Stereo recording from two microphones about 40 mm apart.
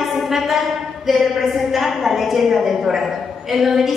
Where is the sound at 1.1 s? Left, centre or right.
Centre.